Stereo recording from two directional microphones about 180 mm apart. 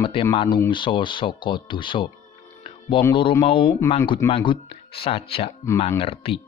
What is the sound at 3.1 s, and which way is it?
Speech, 25° left (ahead or behind).